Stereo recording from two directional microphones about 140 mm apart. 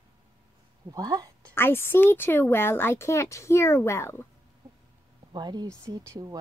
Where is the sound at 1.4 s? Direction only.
10° left (ahead or behind).